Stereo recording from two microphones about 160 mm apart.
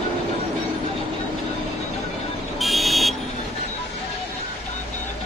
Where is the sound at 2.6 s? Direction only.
Centre (ahead or behind).